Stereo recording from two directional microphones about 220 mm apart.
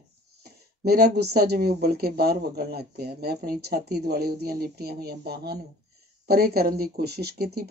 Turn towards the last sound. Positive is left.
turn(degrees=-45)  # may be behind; listen again after turning